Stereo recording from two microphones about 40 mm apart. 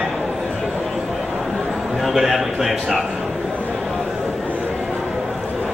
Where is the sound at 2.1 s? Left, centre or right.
Centre.